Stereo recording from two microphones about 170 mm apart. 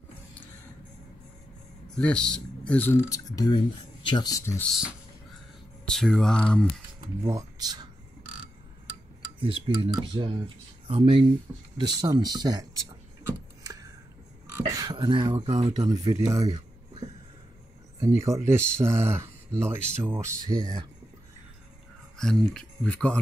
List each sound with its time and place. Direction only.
2.0 s speech: 5° left (ahead or behind)
5.9 s speech: 5° left (ahead or behind)
7.2 s speech: 20° right (ahead or behind)
9.4 s speech: 30° right (ahead or behind)
14.7 s speech: 20° right (ahead or behind)
18.0 s speech: 20° right (ahead or behind)
22.2 s speech: 5° left (ahead or behind)